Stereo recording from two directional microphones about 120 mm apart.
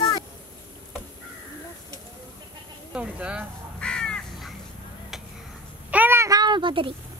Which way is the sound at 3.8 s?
5° left (ahead or behind).